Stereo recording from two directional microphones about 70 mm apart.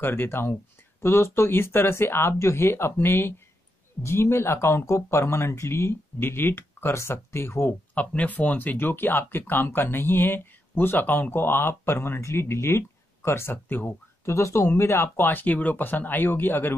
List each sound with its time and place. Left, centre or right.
0.0 s speech: left
7.9 s speech: centre
14.2 s speech: left